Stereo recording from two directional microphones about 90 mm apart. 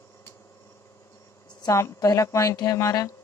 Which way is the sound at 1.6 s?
40° left (ahead or behind).